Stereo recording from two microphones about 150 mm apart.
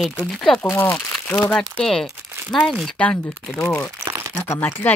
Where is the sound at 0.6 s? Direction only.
15° left (ahead or behind).